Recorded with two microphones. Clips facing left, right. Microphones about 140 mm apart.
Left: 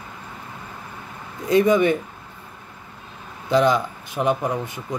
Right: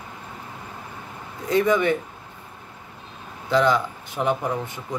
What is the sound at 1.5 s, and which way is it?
Speech, 15° left (ahead or behind).